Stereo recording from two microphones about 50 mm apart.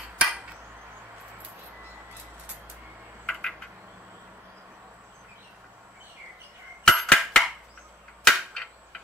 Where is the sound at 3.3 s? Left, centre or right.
Centre.